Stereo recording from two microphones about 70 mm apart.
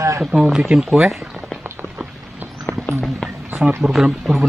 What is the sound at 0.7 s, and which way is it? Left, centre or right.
Speech, centre.